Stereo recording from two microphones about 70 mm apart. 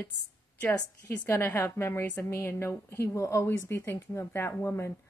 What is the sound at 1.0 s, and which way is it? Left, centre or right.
Speech, left.